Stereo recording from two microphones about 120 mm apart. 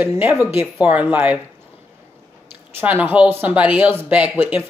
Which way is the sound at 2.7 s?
20° right (ahead or behind).